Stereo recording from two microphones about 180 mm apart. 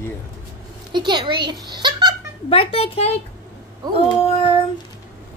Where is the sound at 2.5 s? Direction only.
35° left (ahead or behind).